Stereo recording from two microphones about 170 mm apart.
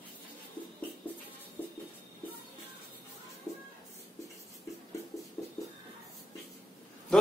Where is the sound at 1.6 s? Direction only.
10° left (ahead or behind).